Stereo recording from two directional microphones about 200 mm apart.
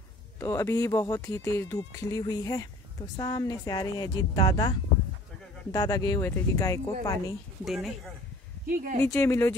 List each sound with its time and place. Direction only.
0.4 s a woman's voice: 15° left (ahead or behind)
7.6 s speech: centre (ahead or behind)
8.6 s speech: 45° right (ahead or behind)
9.0 s speech: 15° left (ahead or behind)